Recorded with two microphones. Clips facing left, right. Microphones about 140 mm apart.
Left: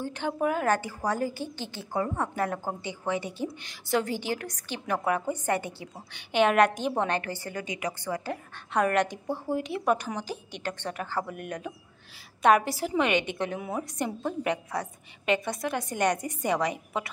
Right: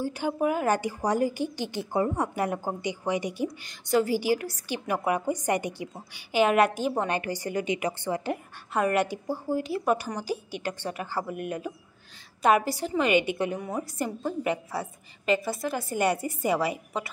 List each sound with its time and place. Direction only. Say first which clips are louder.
0.0 s a woman's voice: right 2 dB; 10° right (ahead or behind)
3.4 s a woman's voice: right 2 dB; centre (ahead or behind); by 5.9 s 15° right (ahead or behind)
5.9 s a woman's voice: even; 5° right (ahead or behind); by 8.4 s 25° right (ahead or behind)
8.7 s a woman's voice: even; 5° right (ahead or behind)
13.1 s a woman's voice: right 4 dB; 10° right (ahead or behind)
13.6 s a woman's voice: even; 5° left (ahead or behind)